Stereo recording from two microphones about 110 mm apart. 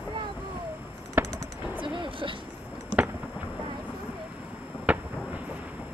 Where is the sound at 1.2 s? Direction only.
20° right (ahead or behind).